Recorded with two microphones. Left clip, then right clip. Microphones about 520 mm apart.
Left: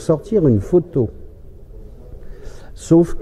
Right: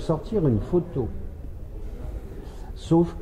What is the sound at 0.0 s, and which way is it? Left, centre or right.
Speech, left.